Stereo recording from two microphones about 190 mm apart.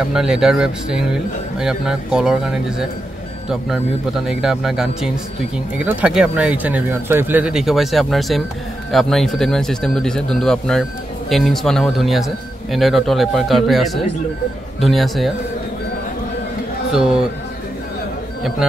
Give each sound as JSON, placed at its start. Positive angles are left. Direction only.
{"t": 0.1, "sound": "speech", "side_deg": -5}
{"t": 16.9, "sound": "speech", "side_deg": -5}